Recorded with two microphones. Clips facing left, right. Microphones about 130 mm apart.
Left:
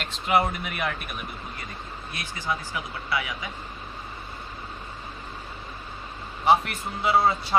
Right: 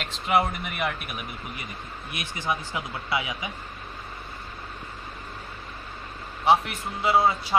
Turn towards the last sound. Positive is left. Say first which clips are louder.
# even
turn(degrees=0)  # may be behind; listen again after turning